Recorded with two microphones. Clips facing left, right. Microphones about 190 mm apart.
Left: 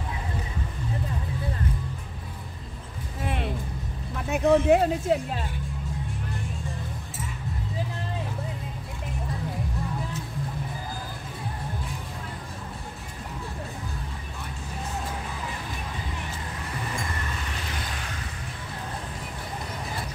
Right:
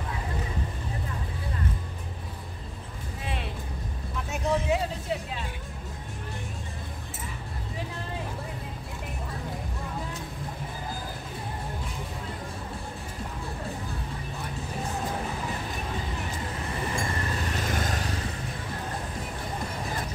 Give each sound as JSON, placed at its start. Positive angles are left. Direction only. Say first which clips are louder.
{"t": 4.3, "sound": "speech", "louder": "left 8 dB", "side_deg": 55}
{"t": 17.6, "sound": "vehicle", "louder": "right 6 dB", "side_deg": -45}